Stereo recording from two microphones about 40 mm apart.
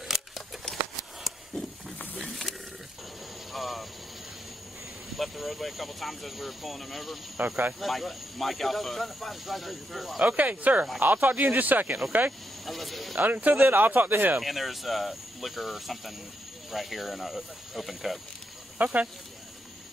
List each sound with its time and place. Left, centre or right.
2.2 s a sound: centre
3.5 s vehicle: centre
5.1 s speech: centre
7.4 s speech: right
7.8 s speech: centre
10.2 s speech: right
12.6 s speech: centre
13.1 s speech: right
14.4 s speech: centre
18.8 s speech: right